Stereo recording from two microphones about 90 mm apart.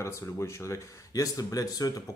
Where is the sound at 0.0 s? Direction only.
30° left (ahead or behind).